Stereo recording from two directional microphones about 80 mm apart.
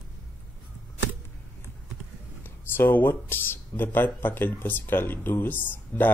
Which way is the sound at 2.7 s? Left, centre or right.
Left.